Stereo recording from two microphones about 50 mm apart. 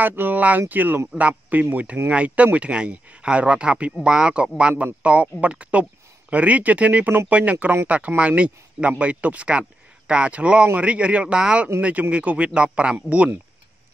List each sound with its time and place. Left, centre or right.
0.0 s speech: right